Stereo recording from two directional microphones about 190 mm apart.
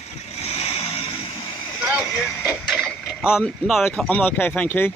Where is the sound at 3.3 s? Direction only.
5° left (ahead or behind).